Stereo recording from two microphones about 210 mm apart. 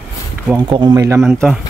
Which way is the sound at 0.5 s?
20° right (ahead or behind).